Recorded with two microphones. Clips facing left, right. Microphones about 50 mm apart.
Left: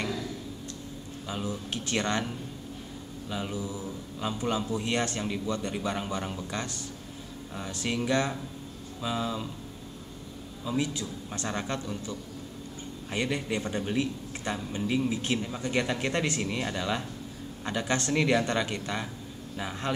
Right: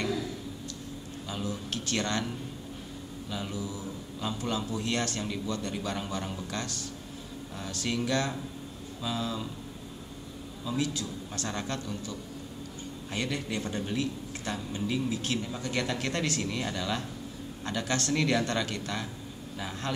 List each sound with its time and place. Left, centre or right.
1.2 s speech: centre
10.6 s speech: centre